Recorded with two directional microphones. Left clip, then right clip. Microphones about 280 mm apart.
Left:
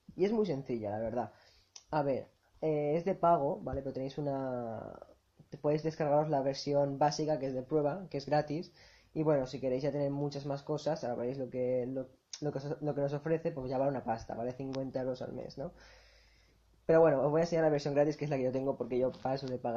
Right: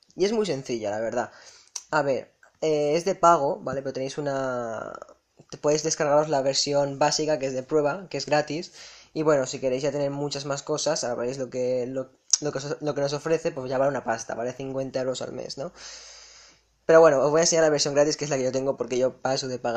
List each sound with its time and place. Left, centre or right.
0.2 s speech: right
16.8 s speech: right